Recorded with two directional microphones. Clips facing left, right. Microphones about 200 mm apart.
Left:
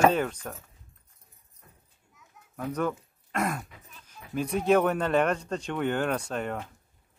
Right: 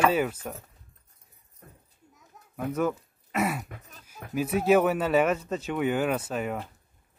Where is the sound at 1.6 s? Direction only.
50° right (ahead or behind).